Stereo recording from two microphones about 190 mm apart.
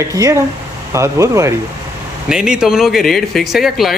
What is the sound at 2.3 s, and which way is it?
Speech, 5° right (ahead or behind).